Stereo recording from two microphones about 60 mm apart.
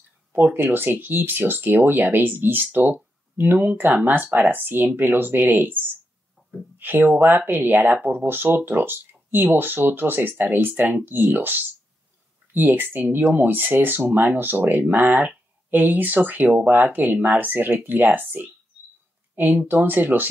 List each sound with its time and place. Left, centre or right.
0.3 s speech: right
6.8 s speech: right
10.8 s speech: centre
11.1 s speech: right